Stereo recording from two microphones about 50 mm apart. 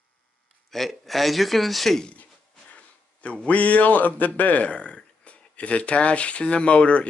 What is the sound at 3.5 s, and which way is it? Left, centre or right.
Speech, left.